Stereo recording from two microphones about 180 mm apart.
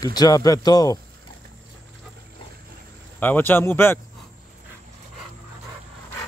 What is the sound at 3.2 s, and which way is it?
Speech, 10° left (ahead or behind).